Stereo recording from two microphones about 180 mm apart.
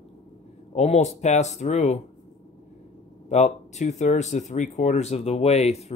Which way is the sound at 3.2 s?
40° left (ahead or behind).